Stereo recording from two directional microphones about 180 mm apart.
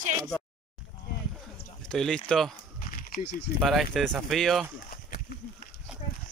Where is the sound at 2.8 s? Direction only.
50° left (ahead or behind).